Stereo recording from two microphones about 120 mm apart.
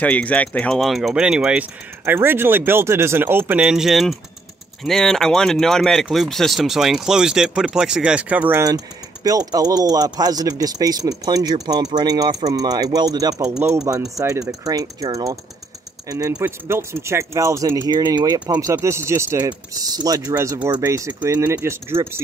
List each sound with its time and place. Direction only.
0.0 s speech: 10° left (ahead or behind); by 8.5 s 10° right (ahead or behind)
8.5 s speech: 30° right (ahead or behind)